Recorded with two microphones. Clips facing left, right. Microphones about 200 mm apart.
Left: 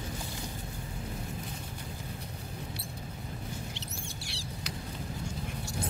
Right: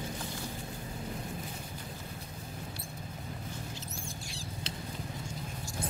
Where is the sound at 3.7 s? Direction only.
75° left (ahead or behind).